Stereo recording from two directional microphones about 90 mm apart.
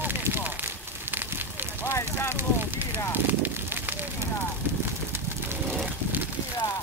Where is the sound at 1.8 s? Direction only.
30° left (ahead or behind).